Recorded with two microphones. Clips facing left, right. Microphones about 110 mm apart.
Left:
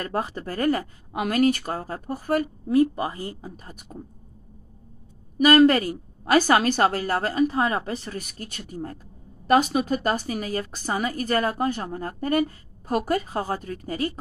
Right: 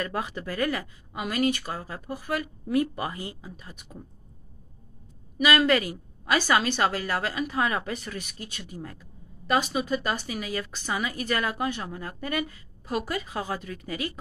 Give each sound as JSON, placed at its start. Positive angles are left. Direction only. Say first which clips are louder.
{"t": 0.0, "sound": "speech", "louder": "left 3 dB", "side_deg": 40}
{"t": 1.1, "sound": "a woman's voice", "louder": "left 5 dB", "side_deg": 50}
{"t": 5.4, "sound": "a woman's voice", "louder": "left 6 dB", "side_deg": 45}